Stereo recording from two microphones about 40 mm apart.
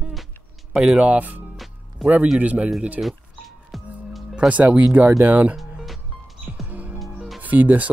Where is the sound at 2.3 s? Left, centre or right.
Right.